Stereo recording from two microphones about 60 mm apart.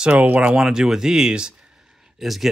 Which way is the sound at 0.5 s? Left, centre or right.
Centre.